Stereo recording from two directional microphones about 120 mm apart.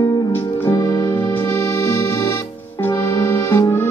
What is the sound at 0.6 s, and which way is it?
Music, 30° left (ahead or behind).